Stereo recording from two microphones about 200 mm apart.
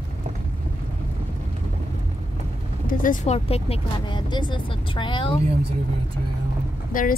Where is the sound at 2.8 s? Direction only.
45° left (ahead or behind); by 5.3 s 25° left (ahead or behind).